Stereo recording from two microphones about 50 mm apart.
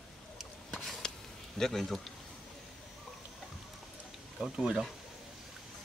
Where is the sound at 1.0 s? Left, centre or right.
Centre.